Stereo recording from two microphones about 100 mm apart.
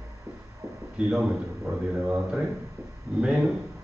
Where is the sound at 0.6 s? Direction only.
30° right (ahead or behind).